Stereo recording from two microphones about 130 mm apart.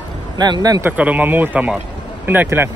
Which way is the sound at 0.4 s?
30° right (ahead or behind).